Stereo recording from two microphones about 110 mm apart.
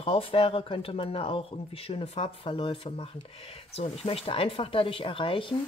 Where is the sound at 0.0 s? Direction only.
55° left (ahead or behind).